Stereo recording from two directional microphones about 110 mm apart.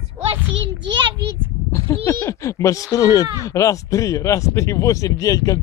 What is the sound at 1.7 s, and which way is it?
Bleat, 25° left (ahead or behind).